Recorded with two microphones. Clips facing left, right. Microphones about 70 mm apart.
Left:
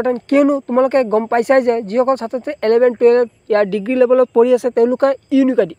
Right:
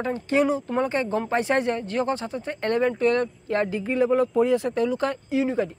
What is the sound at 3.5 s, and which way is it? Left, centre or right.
Speech, left.